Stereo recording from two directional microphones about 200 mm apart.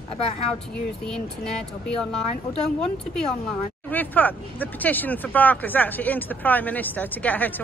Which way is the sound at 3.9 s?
10° left (ahead or behind).